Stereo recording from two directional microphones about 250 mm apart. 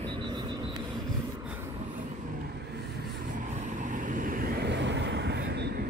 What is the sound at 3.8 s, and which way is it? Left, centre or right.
Vehicle, right.